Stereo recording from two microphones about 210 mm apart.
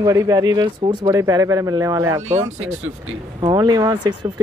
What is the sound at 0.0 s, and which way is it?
Speech, 15° right (ahead or behind).